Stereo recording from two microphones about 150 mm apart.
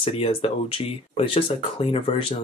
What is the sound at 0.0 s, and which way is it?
Speech, 40° left (ahead or behind).